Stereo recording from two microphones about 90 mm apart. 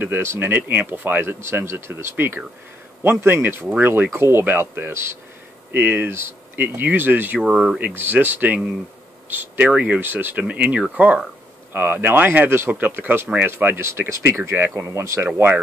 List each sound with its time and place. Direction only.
0.0 s speech: 25° right (ahead or behind)
7.3 s speech: 5° right (ahead or behind)
7.8 s speech: 20° right (ahead or behind)